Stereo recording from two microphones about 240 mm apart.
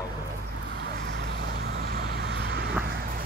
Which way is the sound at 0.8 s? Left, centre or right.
Right.